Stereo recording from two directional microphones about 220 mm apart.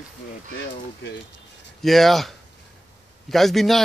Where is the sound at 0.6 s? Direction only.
55° left (ahead or behind).